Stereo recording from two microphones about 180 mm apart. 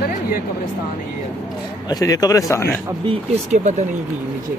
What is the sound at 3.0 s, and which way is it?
Speech, 40° right (ahead or behind).